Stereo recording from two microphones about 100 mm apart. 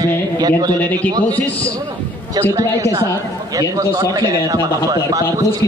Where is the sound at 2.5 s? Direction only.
35° right (ahead or behind).